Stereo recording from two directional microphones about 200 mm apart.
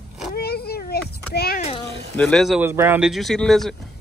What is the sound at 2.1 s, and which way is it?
Speech, centre (ahead or behind).